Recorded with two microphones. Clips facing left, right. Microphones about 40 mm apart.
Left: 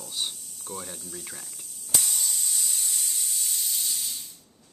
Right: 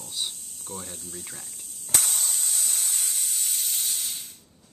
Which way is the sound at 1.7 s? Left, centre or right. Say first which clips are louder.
Right 1 dB; right.